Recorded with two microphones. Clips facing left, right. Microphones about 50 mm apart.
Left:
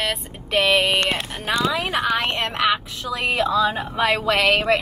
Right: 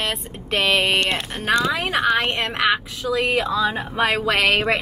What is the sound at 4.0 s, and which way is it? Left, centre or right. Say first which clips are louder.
Speech: even; right.